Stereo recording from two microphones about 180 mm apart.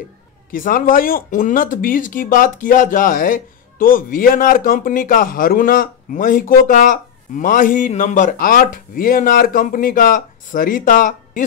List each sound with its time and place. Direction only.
0.5 s speech: 50° left (ahead or behind)